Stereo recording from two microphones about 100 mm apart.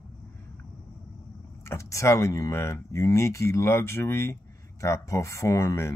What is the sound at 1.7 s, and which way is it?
Speech, 30° left (ahead or behind).